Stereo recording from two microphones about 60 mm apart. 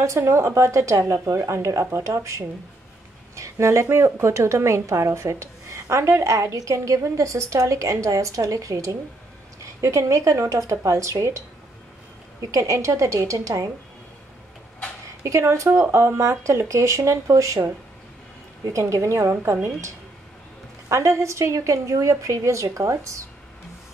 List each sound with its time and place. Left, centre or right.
0.0 s a woman's voice: right
12.4 s a woman's voice: right
15.2 s a woman's voice: right
18.7 s a woman's voice: right
20.9 s a woman's voice: right